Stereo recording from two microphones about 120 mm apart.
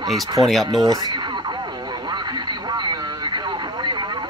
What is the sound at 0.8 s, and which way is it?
Speech, 30° right (ahead or behind).